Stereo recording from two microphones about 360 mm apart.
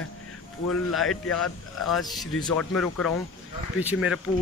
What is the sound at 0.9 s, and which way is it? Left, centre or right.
Speech, centre.